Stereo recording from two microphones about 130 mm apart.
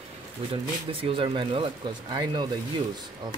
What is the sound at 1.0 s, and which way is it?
Speech, 40° right (ahead or behind).